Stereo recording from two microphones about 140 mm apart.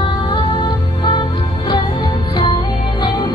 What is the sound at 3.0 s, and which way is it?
Music, 30° left (ahead or behind).